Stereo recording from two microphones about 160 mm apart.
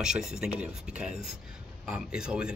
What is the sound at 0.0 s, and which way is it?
Speech, 5° right (ahead or behind).